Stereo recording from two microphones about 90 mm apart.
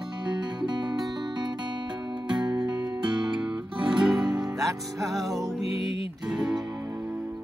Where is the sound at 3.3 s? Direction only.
15° right (ahead or behind).